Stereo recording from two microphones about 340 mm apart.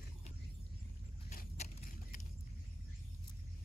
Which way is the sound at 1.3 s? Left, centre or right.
Left.